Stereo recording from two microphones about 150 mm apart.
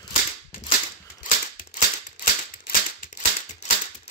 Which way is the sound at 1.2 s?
60° left (ahead or behind).